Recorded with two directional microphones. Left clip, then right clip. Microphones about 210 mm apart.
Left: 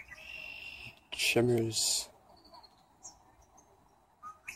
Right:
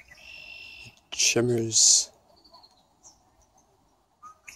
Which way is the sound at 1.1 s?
30° right (ahead or behind).